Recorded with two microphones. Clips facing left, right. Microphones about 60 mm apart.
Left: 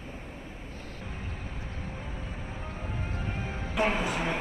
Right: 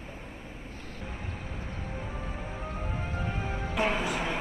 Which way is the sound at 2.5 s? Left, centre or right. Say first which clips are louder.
Right 2 dB; right.